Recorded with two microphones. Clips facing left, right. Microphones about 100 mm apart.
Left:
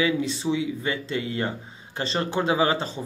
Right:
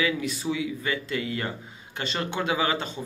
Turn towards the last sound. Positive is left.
turn(degrees=30)  # may be behind; listen again after turning